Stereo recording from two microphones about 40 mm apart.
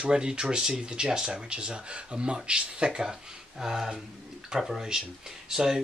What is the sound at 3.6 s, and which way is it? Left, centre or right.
Speech, centre.